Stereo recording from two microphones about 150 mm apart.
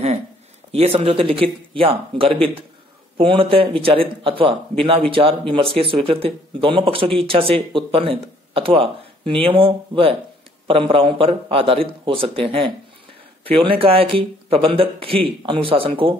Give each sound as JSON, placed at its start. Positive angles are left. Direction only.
{"t": 0.7, "sound": "speech", "side_deg": -40}